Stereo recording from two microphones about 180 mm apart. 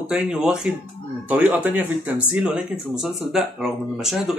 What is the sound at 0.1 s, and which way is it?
Speech, 5° right (ahead or behind).